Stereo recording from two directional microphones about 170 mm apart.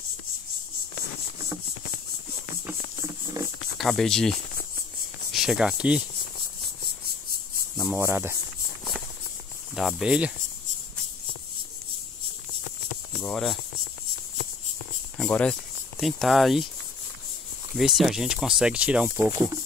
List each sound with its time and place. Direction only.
2.6 s cricket: 20° right (ahead or behind)
3.7 s speech: centre (ahead or behind)
7.9 s speech: 15° right (ahead or behind)
9.8 s speech: centre (ahead or behind)
13.2 s speech: centre (ahead or behind)
15.1 s cricket: 5° left (ahead or behind)
16.0 s speech: centre (ahead or behind)
17.7 s speech: centre (ahead or behind)